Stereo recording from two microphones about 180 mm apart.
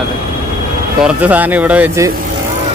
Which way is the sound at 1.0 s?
5° right (ahead or behind).